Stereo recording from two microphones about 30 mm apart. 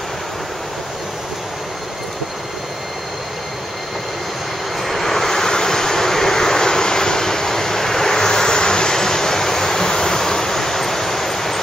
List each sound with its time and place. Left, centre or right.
4.8 s vehicle: centre; by 8.9 s left
8.9 s waves: centre